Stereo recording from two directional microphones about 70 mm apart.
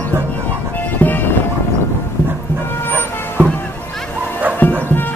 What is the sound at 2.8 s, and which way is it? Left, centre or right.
Music, left.